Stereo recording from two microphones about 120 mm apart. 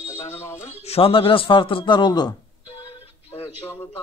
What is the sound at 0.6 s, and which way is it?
A man's voice, 65° left (ahead or behind).